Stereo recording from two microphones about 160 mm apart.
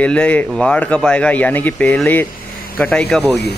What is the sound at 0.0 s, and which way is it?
Speech, 5° left (ahead or behind).